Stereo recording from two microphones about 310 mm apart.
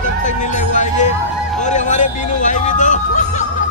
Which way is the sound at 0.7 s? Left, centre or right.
Left.